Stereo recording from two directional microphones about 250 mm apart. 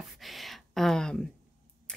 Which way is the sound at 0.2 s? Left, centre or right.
Centre.